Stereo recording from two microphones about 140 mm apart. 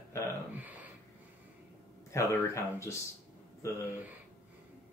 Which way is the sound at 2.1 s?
20° left (ahead or behind).